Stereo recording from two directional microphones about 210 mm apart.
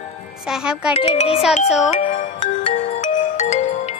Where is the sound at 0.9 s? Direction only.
30° left (ahead or behind).